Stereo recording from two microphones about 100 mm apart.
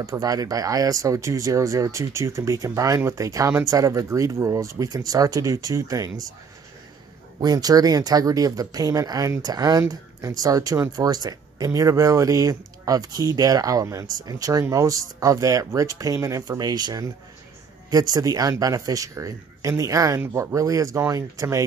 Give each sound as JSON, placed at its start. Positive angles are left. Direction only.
{"t": 0.0, "sound": "speech", "side_deg": -35}
{"t": 7.3, "sound": "speech", "side_deg": -40}